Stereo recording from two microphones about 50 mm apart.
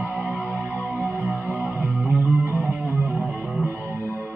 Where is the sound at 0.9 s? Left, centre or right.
Right.